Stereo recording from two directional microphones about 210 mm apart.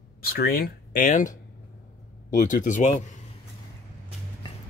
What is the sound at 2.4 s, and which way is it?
Speech, 40° left (ahead or behind).